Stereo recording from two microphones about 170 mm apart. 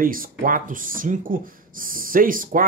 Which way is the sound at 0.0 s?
55° right (ahead or behind).